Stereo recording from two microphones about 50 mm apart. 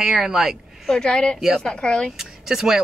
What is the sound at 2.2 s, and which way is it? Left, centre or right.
Speech, centre.